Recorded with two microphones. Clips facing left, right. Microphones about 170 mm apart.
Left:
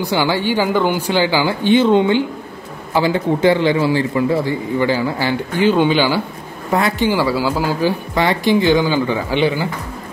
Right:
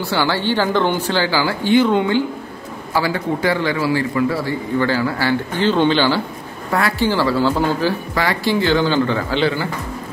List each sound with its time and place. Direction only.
0.0 s a man's voice: 15° left (ahead or behind)
8.1 s speech: 20° left (ahead or behind)